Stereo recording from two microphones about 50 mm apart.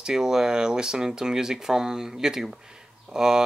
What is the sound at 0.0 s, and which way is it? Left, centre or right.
Speech, centre.